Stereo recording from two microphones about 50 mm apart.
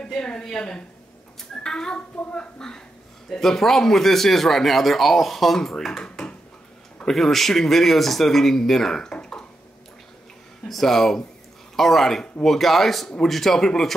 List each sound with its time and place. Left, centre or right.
0.0 s a woman's voice: centre
10.7 s a woman's voice: centre